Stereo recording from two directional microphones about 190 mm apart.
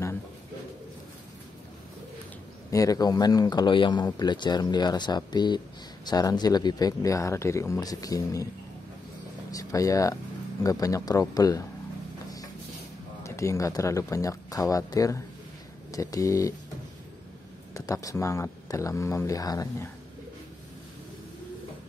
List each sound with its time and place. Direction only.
2.7 s speech: 20° left (ahead or behind)
9.5 s speech: 20° left (ahead or behind)
13.2 s speech: 15° left (ahead or behind)
17.7 s speech: 15° left (ahead or behind)